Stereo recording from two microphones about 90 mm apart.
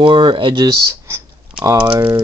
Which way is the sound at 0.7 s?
30° right (ahead or behind).